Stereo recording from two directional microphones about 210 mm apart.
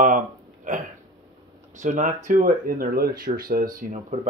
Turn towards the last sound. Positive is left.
turn(degrees=-40)  # may be behind; listen again after turning